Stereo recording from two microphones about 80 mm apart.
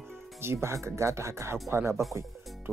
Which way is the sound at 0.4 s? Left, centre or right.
Right.